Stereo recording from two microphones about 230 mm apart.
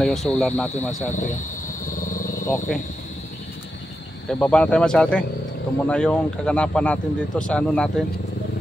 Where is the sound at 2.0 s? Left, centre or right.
Left.